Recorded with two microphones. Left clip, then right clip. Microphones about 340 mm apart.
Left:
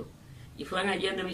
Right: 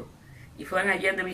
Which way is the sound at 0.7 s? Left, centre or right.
Centre.